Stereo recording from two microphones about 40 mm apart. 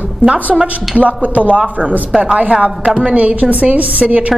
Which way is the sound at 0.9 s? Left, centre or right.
Right.